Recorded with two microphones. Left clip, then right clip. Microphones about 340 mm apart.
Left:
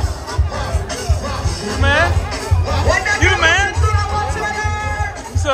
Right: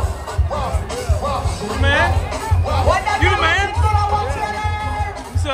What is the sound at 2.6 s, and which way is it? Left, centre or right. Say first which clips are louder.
Music: left 1 dB; centre.